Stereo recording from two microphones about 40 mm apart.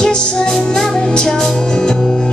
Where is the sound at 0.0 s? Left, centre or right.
Left.